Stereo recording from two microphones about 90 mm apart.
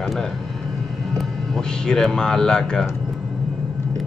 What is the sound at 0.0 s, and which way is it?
Speech, centre (ahead or behind).